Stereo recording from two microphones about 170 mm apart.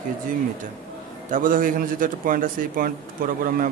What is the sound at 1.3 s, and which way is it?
A man's voice, 55° right (ahead or behind).